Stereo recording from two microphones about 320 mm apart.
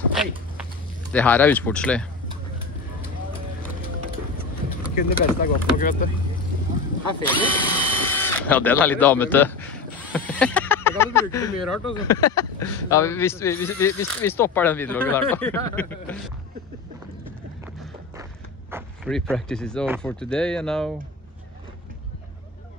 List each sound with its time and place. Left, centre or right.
1.1 s speech: centre
4.9 s speech: left
7.2 s a man's voice: centre
18.7 s speech: centre